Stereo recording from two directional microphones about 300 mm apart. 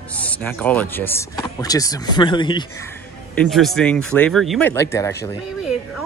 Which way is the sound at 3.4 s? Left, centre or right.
Centre.